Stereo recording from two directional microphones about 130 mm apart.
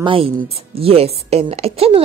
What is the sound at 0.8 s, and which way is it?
A woman's voice, 50° right (ahead or behind).